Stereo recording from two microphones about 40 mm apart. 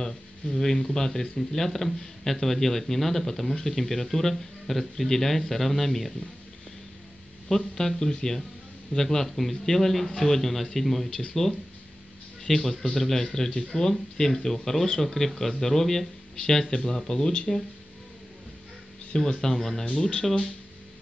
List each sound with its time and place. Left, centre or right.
0.0 s a man's voice: centre
7.4 s a man's voice: centre
19.1 s a man's voice: centre